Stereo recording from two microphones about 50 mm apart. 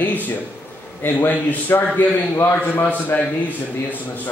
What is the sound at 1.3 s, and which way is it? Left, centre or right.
Speech, left.